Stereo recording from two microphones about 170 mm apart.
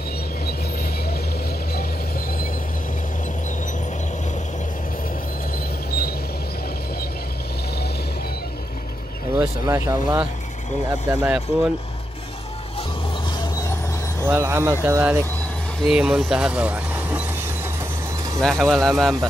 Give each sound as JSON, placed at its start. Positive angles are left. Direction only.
{"t": 5.9, "sound": "train", "side_deg": 65}
{"t": 9.4, "sound": "speech", "side_deg": -15}
{"t": 11.1, "sound": "speech", "side_deg": -5}
{"t": 14.2, "sound": "speech", "side_deg": -15}
{"t": 15.9, "sound": "speech", "side_deg": -5}
{"t": 18.4, "sound": "speech", "side_deg": 0}